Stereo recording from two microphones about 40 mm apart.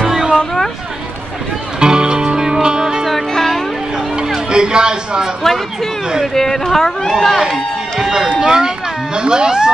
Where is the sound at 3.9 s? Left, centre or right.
Centre.